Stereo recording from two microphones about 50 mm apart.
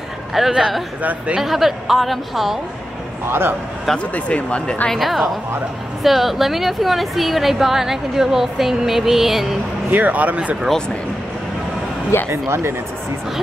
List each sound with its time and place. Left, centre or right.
0.5 s speech: centre
1.4 s a woman's voice: centre
3.3 s a man's voice: right
4.1 s speech: left
4.9 s a woman's voice: centre
9.8 s speech: right
12.3 s speech: right